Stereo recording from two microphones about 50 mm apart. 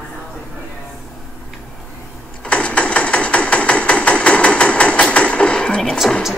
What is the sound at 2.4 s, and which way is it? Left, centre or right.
Hammer, left.